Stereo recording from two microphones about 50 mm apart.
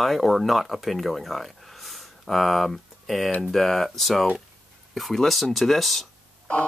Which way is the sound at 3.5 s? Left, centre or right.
Centre.